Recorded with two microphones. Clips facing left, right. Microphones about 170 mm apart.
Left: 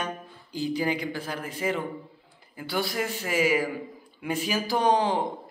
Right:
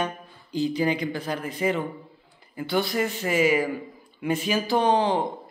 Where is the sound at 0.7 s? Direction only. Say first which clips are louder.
Right 1 dB; 10° left (ahead or behind).